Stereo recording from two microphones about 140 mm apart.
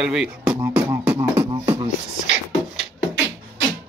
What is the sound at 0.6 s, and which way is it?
Beatboxing, 25° right (ahead or behind).